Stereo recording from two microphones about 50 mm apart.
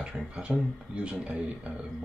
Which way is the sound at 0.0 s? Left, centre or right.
Right.